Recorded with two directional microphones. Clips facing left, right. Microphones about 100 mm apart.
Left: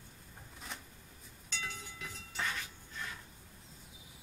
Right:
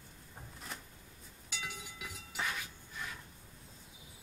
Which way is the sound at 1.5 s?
10° right (ahead or behind).